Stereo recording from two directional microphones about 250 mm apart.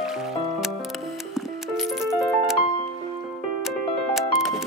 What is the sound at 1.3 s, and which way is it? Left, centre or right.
Music, centre.